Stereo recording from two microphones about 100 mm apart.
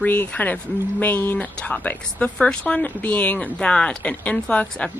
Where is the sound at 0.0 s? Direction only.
15° left (ahead or behind).